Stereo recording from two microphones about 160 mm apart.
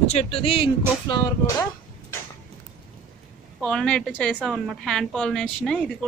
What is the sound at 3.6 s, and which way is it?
A woman's voice, 5° left (ahead or behind).